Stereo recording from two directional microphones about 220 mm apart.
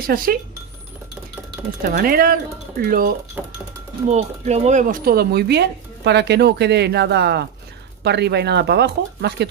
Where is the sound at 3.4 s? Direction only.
10° right (ahead or behind).